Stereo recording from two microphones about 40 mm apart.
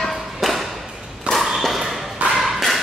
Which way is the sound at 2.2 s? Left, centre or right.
Right.